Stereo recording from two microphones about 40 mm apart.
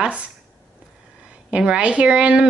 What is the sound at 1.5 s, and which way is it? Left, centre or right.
Speech, right.